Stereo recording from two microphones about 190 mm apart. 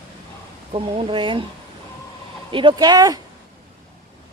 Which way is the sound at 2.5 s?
25° right (ahead or behind).